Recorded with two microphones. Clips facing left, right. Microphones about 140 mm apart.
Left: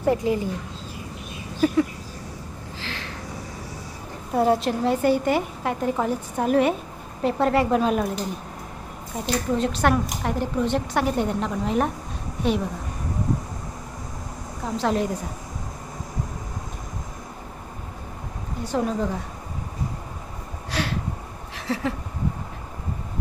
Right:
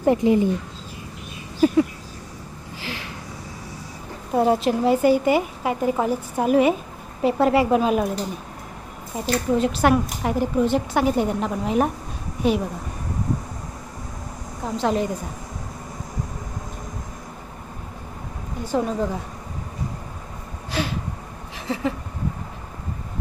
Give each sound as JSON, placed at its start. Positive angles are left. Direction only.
{"t": 0.0, "sound": "a woman's voice", "side_deg": -20}
{"t": 2.8, "sound": "a sound", "side_deg": -10}
{"t": 4.4, "sound": "speech", "side_deg": 0}
{"t": 14.8, "sound": "speech", "side_deg": 0}
{"t": 18.7, "sound": "speech", "side_deg": -5}
{"t": 20.7, "sound": "a sound", "side_deg": 0}